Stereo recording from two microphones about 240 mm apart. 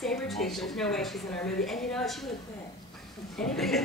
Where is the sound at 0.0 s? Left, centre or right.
Centre.